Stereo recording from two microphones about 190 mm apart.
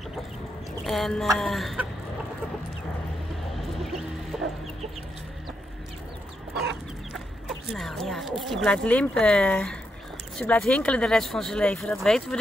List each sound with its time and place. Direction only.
0.8 s speech: centre (ahead or behind)
3.5 s music: centre (ahead or behind)
7.4 s speech: centre (ahead or behind)